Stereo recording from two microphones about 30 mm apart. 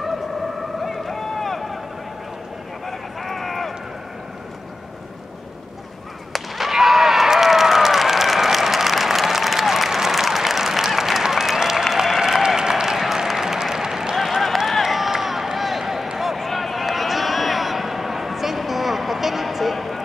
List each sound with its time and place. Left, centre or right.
0.8 s boat: centre
2.9 s run: centre
6.3 s whip: centre
10.3 s applause: centre
12.8 s a sound: centre
14.1 s run: centre
14.8 s a sound: centre
15.0 s run: centre
16.2 s a sound: centre